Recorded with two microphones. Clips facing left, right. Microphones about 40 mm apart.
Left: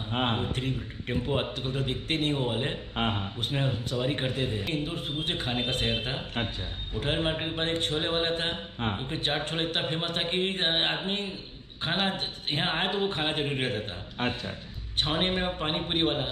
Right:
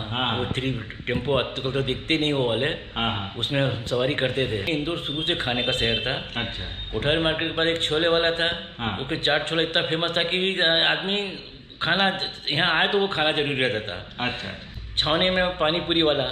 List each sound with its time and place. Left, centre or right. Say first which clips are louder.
0.1 s a man's voice: right 3 dB; right